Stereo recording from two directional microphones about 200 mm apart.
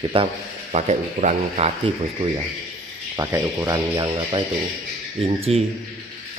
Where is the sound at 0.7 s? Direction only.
35° right (ahead or behind).